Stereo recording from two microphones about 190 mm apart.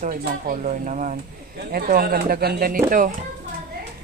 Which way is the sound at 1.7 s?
55° right (ahead or behind).